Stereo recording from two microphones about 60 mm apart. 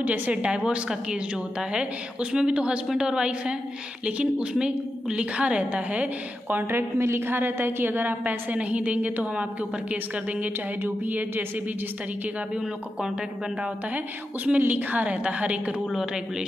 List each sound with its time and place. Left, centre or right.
0.0 s a woman's voice: right
6.5 s a woman's voice: right
13.9 s a woman's voice: right
15.9 s speech: centre